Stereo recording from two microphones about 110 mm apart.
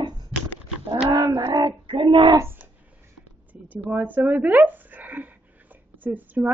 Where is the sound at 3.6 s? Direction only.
15° right (ahead or behind).